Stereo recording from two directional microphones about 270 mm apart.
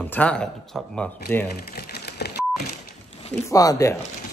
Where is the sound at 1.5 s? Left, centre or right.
Left.